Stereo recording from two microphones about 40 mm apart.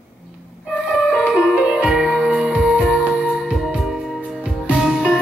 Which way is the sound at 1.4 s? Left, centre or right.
Centre.